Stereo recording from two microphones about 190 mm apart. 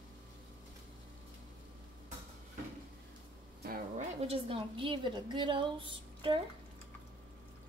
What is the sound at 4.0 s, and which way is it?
A woman's voice, 35° right (ahead or behind).